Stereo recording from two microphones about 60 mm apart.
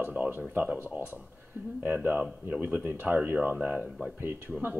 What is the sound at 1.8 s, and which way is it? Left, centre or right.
Speech, right.